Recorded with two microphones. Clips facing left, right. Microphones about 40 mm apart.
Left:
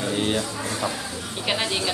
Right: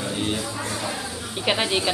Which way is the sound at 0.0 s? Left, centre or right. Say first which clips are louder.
Left 2 dB; centre.